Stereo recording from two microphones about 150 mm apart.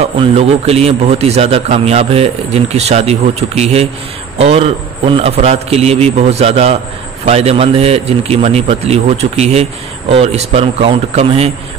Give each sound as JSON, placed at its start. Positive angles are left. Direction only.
{"t": 0.0, "sound": "a man's voice", "side_deg": -40}